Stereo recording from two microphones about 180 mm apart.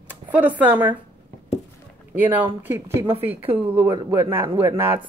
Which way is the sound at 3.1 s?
30° right (ahead or behind).